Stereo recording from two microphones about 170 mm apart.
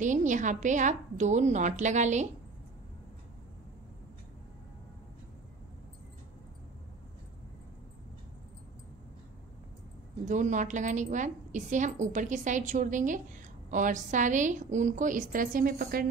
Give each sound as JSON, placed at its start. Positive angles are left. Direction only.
{"t": 0.0, "sound": "a woman's voice", "side_deg": -45}
{"t": 10.2, "sound": "a woman's voice", "side_deg": -45}